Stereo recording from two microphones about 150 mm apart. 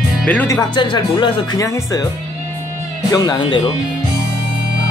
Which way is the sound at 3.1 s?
25° left (ahead or behind).